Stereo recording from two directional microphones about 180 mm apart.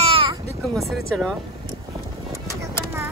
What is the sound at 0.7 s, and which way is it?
Speech, centre (ahead or behind).